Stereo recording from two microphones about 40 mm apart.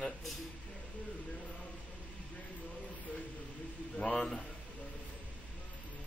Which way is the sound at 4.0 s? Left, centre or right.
Left.